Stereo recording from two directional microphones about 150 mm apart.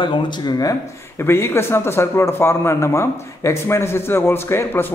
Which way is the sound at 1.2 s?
15° left (ahead or behind).